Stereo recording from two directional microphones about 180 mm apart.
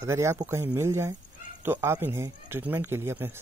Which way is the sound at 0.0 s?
15° right (ahead or behind).